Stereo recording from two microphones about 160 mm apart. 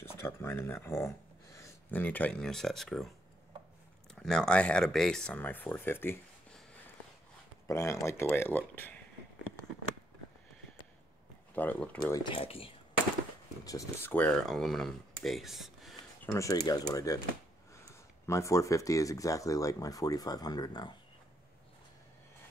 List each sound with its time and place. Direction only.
0.0 s speech: 15° left (ahead or behind)
4.1 s speech: 5° left (ahead or behind)
7.6 s speech: 20° left (ahead or behind)
11.5 s speech: 10° left (ahead or behind)
12.1 s speech: 30° left (ahead or behind)
13.7 s speech: 20° left (ahead or behind)
14.1 s speech: 5° left (ahead or behind)
16.3 s speech: 20° left (ahead or behind)
18.2 s speech: 20° left (ahead or behind)